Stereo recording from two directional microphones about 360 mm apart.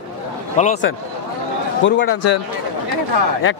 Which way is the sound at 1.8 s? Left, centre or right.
Left.